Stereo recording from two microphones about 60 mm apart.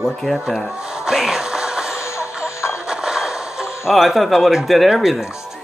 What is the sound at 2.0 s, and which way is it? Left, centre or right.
Music, left.